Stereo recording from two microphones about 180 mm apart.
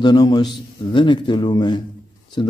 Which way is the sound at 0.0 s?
25° left (ahead or behind).